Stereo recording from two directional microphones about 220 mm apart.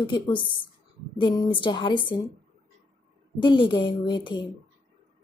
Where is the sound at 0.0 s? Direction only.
20° left (ahead or behind).